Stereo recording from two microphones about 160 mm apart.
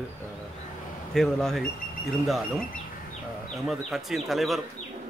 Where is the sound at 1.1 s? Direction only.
5° left (ahead or behind).